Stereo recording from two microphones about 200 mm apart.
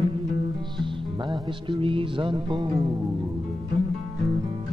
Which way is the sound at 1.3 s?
25° right (ahead or behind).